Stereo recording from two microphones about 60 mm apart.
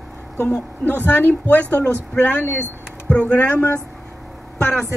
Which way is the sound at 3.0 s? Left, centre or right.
Left.